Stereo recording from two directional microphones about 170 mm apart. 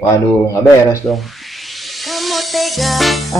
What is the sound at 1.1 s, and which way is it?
Music, centre (ahead or behind).